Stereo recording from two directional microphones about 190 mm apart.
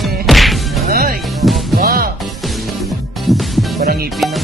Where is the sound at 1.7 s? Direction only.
50° right (ahead or behind).